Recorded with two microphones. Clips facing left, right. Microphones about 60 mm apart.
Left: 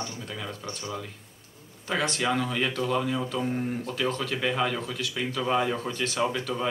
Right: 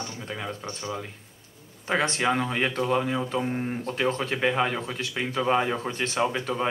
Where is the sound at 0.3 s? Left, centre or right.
Right.